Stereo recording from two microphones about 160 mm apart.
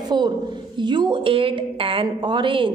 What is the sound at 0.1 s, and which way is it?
A woman's voice, 30° right (ahead or behind).